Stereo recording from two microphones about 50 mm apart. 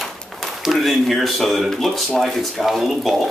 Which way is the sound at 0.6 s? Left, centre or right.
Centre.